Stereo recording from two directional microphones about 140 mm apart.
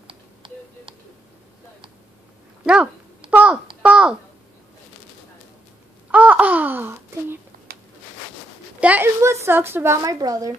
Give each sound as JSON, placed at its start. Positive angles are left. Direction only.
{"t": 0.0, "sound": "a sound", "side_deg": -35}
{"t": 2.6, "sound": "speech", "side_deg": -10}
{"t": 3.3, "sound": "telephone dialing", "side_deg": -10}
{"t": 3.8, "sound": "a sound", "side_deg": -5}
{"t": 6.1, "sound": "babbling", "side_deg": -10}
{"t": 8.7, "sound": "a woman's voice", "side_deg": -10}